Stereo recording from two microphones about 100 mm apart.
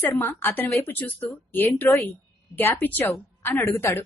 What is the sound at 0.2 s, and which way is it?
A woman's voice, 20° left (ahead or behind).